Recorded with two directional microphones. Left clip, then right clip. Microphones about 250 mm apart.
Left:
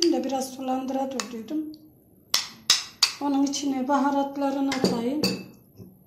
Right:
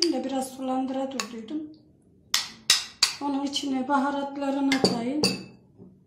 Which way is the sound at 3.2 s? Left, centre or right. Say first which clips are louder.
Left 3 dB; left.